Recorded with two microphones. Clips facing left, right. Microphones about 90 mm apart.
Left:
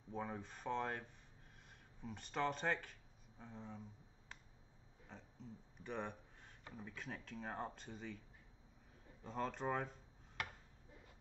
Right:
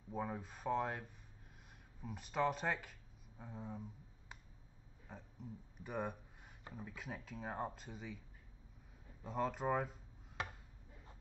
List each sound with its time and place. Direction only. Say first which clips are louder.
0.1 s speech: right 3 dB; 5° right (ahead or behind)
5.0 s speech: right 3 dB; 10° right (ahead or behind)
9.2 s speech: right 4 dB; 5° right (ahead or behind)